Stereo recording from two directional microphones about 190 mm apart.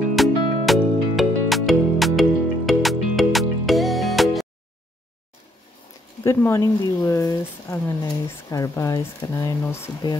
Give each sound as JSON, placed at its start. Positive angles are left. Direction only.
{"t": 0.1, "sound": "music", "side_deg": 0}
{"t": 6.2, "sound": "speech", "side_deg": 15}